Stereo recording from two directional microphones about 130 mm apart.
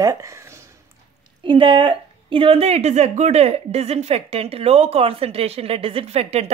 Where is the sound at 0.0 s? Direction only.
25° right (ahead or behind).